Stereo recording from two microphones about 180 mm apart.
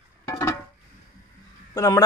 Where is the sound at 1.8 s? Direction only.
20° left (ahead or behind).